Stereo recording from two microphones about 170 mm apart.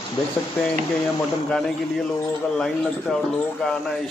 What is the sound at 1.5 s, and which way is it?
A man's voice, 5° left (ahead or behind).